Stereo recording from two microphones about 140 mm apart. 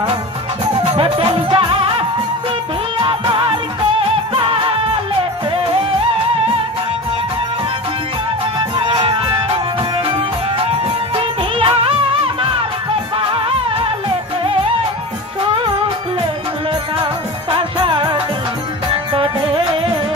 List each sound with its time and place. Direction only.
0.9 s music: 45° right (ahead or behind)
8.5 s music: 35° right (ahead or behind)
11.5 s music: 40° right (ahead or behind)
17.0 s music: 40° right (ahead or behind)